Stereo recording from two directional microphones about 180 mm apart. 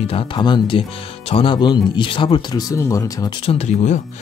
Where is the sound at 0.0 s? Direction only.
30° left (ahead or behind).